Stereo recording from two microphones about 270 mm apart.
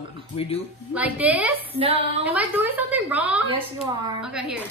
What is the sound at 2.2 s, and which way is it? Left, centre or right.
A woman's voice, centre.